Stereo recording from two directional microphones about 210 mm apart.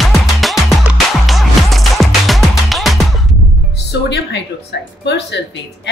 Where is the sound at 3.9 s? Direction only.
55° left (ahead or behind).